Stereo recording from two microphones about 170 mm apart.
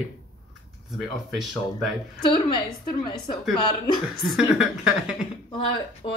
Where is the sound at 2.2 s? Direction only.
25° left (ahead or behind).